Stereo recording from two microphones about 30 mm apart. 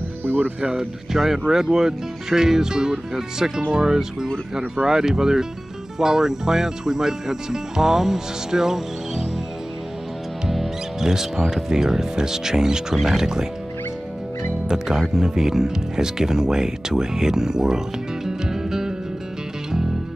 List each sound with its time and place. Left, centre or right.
0.6 s speech: right
1.1 s speech: centre
11.0 s speech: centre
15.0 s speech: centre